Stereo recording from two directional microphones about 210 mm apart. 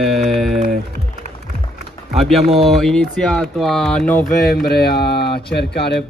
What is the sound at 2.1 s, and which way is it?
Speech, centre (ahead or behind).